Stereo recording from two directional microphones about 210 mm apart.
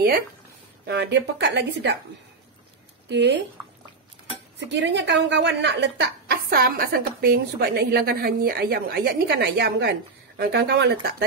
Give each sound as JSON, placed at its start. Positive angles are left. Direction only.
{"t": 0.8, "sound": "a woman's voice", "side_deg": -55}
{"t": 3.1, "sound": "speech", "side_deg": -55}
{"t": 4.6, "sound": "a woman's voice", "side_deg": -55}